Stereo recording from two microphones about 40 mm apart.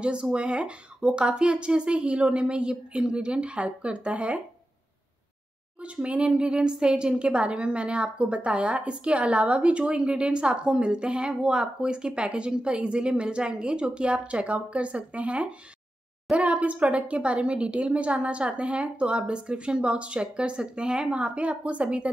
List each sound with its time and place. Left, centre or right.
0.0 s a woman's voice: right
6.0 s a woman's voice: right